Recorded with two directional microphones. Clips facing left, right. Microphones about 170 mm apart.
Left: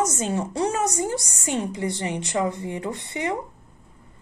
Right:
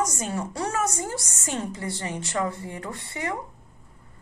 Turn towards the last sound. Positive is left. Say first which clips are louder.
# left 4 dB
turn(degrees=20)  # may be behind; listen again after turning